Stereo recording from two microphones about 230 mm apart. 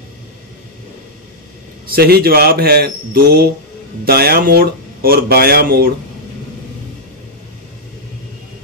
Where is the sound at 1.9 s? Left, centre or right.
Right.